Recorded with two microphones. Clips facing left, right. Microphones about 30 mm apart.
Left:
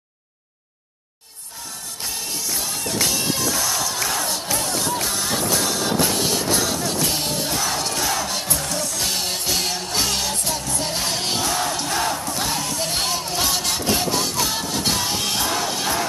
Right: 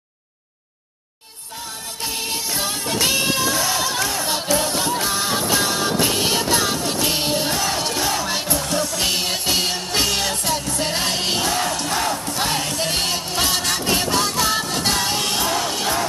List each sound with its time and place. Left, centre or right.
2.0 s music: right
3.4 s a sound: right
4.0 s crowd: centre
4.6 s music: centre
11.7 s crowd: centre
12.3 s music: right